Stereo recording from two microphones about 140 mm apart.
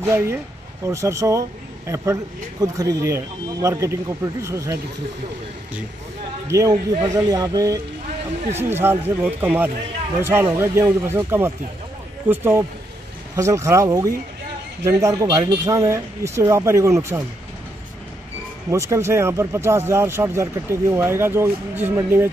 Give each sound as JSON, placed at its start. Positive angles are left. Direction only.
{"t": 0.0, "sound": "speech", "side_deg": -20}
{"t": 2.6, "sound": "speech", "side_deg": -25}
{"t": 6.4, "sound": "speech", "side_deg": -20}
{"t": 18.7, "sound": "speech", "side_deg": -20}